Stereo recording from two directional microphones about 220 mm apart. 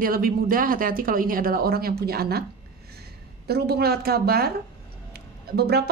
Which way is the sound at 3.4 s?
45° right (ahead or behind).